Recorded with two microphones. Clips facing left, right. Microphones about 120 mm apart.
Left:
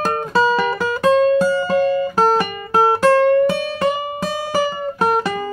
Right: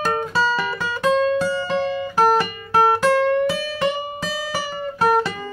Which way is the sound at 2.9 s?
40° left (ahead or behind).